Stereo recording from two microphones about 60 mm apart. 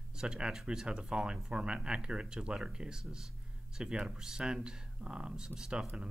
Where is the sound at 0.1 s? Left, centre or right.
Centre.